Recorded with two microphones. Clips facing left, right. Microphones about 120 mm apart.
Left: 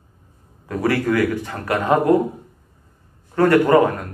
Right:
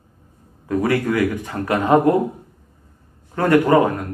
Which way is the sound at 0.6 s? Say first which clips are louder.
Right 1 dB; 20° right (ahead or behind).